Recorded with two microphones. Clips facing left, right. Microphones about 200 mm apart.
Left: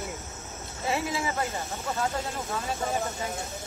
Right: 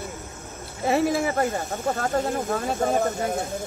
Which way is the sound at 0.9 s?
55° right (ahead or behind).